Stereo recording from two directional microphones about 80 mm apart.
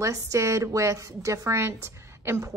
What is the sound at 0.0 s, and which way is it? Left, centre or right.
A woman's voice, right.